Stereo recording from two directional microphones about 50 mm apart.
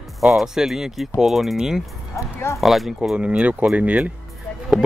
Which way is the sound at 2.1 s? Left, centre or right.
Left.